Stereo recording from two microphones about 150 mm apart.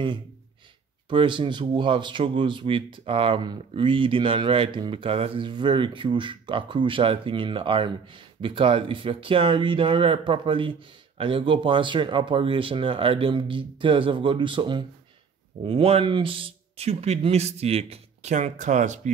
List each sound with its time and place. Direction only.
1.0 s speech: 30° right (ahead or behind); by 19.1 s 55° right (ahead or behind)